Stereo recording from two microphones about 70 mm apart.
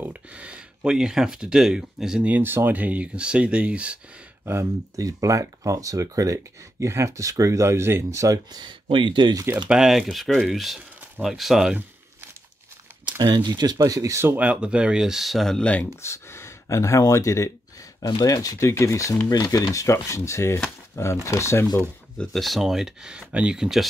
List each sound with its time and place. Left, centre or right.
0.0 s speech: right
2.2 s speech: right
4.9 s speech: right
8.5 s speech: right
9.7 s speech: centre
13.0 s speech: right
13.8 s speech: right
14.4 s speech: centre
16.0 s speech: left
18.0 s speech: left
18.7 s speech: left
19.2 s speech: left
22.3 s speech: centre